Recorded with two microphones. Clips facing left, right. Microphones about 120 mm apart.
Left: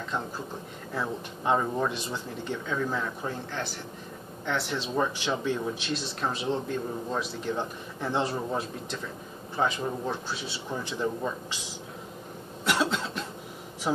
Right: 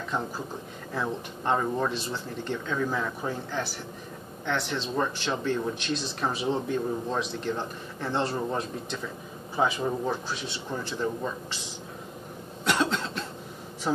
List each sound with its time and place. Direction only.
0.9 s speech: 10° left (ahead or behind)
4.5 s speech: 5° left (ahead or behind)
9.6 s speech: 5° right (ahead or behind)
10.7 s speech: 15° left (ahead or behind)
12.6 s cough: 5° left (ahead or behind)
13.9 s speech: 10° left (ahead or behind)